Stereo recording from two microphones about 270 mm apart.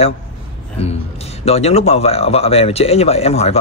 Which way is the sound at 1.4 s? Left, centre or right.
Left.